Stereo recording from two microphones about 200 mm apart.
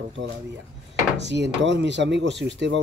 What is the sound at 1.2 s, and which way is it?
Speech, 60° right (ahead or behind).